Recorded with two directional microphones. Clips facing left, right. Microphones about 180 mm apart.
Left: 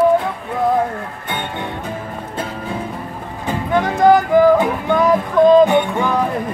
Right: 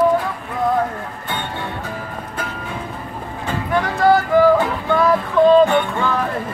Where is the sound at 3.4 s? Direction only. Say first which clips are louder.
Left 3 dB; 20° left (ahead or behind).